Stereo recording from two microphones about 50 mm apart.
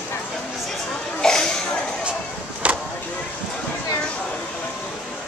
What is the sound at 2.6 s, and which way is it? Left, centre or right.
Vehicle, right.